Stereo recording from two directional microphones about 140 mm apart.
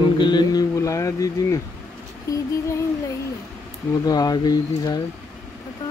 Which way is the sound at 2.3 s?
25° left (ahead or behind).